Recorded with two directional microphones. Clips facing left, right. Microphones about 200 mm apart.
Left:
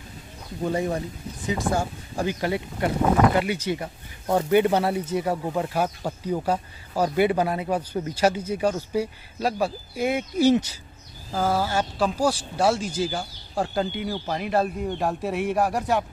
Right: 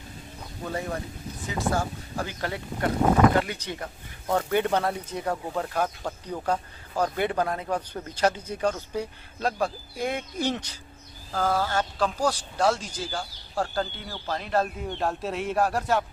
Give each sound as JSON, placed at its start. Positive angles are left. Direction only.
{"t": 0.7, "sound": "speech", "side_deg": 20}